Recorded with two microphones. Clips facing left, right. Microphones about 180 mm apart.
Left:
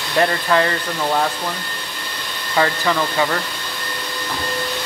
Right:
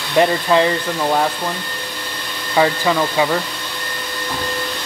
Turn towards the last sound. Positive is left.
turn(degrees=-15)  # may be behind; listen again after turning